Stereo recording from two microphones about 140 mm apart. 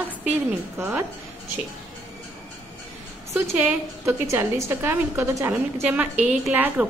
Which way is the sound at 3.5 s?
15° right (ahead or behind).